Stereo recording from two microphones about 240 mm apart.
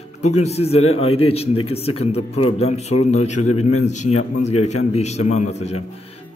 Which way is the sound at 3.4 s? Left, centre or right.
Left.